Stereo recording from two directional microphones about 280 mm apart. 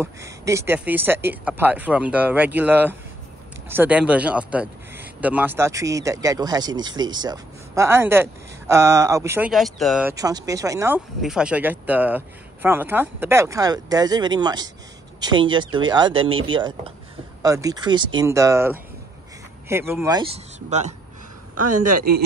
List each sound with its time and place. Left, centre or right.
0.0 s speech: centre
20.5 s speech: right
21.5 s a man's voice: right